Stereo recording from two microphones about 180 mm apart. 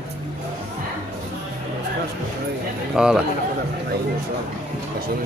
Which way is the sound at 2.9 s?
5° right (ahead or behind).